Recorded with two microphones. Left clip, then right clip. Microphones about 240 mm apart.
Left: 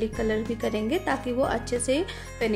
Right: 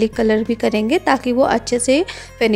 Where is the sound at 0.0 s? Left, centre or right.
Right.